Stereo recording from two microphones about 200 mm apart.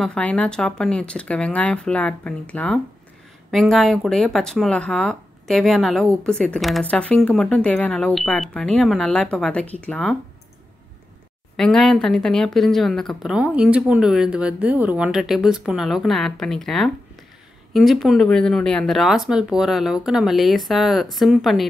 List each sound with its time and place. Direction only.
0.0 s speech: 5° left (ahead or behind)
11.5 s speech: 5° left (ahead or behind)